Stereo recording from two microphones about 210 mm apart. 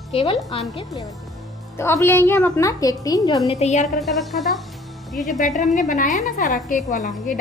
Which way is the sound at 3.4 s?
30° left (ahead or behind).